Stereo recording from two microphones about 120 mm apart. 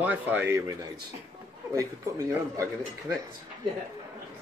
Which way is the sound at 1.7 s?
25° right (ahead or behind).